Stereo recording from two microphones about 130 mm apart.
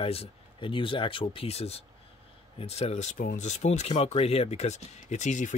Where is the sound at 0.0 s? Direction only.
45° left (ahead or behind); by 3.9 s 60° left (ahead or behind).